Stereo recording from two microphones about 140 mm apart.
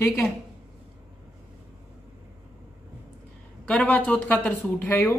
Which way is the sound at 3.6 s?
5° left (ahead or behind).